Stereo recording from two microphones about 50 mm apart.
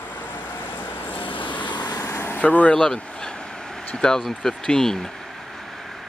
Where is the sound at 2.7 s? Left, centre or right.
Centre.